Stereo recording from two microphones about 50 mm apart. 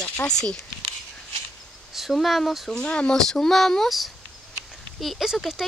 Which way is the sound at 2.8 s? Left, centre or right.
Centre.